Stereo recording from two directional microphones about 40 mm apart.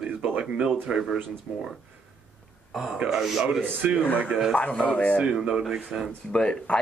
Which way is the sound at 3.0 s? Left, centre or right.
Centre.